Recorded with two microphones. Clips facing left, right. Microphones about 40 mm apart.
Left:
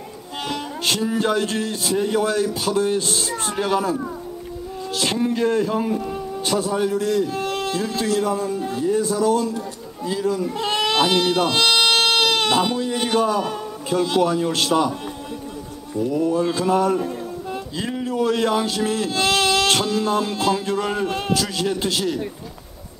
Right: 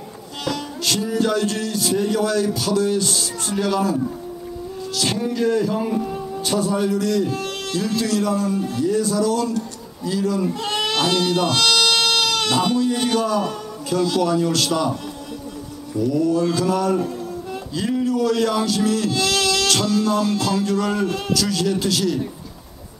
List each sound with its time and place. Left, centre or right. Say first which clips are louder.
0.5 s a man's voice: right 1 dB; left
5.9 s speech: right 1 dB; centre
6.4 s a man's voice: right 1 dB; left
10.6 s baby cry: left 2 dB; left
12.7 s speech: right 1 dB; left
16.0 s speech: right 1 dB; left